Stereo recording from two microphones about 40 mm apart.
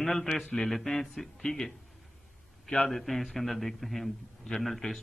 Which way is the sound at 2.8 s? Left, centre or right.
Centre.